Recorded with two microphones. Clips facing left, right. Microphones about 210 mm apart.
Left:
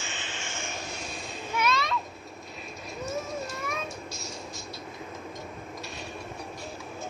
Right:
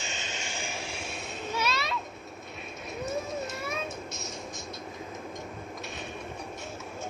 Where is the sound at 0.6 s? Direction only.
10° right (ahead or behind).